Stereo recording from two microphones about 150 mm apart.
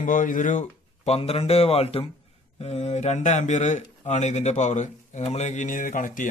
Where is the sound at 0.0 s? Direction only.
60° left (ahead or behind).